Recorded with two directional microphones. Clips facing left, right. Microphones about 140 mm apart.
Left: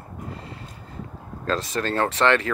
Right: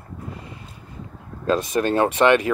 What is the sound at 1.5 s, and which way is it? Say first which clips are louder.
Speech: right 5 dB; 15° right (ahead or behind).